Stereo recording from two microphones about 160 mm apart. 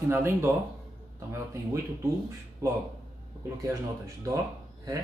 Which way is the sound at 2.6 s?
20° right (ahead or behind).